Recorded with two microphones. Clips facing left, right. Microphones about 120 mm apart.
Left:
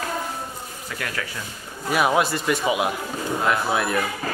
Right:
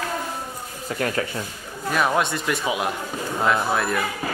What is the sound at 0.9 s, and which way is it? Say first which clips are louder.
Speech: right 7 dB; 35° right (ahead or behind).